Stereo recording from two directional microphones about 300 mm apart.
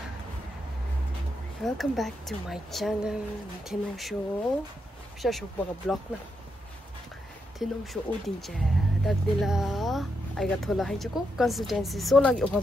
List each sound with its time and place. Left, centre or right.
1.6 s speech: centre
7.5 s speech: centre